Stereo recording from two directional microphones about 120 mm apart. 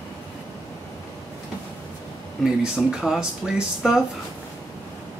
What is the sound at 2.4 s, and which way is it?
Speech, 5° right (ahead or behind).